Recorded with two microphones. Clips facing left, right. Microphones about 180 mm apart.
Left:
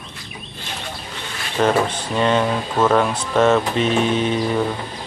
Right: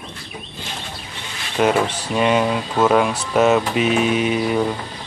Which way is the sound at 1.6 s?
10° right (ahead or behind).